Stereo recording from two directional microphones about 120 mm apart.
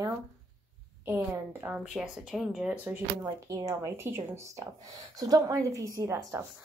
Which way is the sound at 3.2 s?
30° right (ahead or behind).